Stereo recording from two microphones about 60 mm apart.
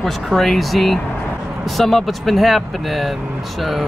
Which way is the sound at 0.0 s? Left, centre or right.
Centre.